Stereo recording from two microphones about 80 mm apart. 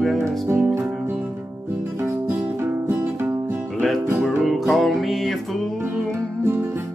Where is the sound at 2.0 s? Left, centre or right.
Right.